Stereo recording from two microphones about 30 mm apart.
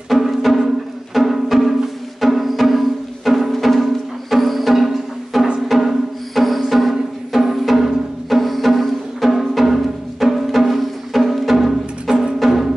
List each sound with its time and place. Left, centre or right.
0.1 s music: centre